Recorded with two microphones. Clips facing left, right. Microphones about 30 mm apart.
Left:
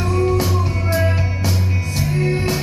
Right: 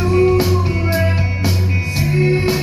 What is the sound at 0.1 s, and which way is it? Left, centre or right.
Music, right.